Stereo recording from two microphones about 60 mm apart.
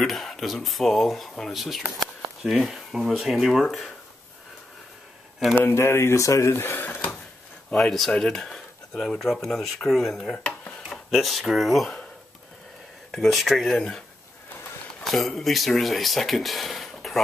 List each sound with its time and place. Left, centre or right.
0.0 s speech: centre
5.5 s speech: left
5.8 s speech: left
7.7 s speech: centre
10.3 s dishes: left
10.9 s speech: centre
13.1 s speech: centre
15.0 s speech: centre